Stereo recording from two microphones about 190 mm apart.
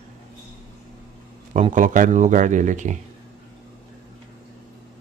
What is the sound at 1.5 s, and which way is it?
Speech, 40° right (ahead or behind).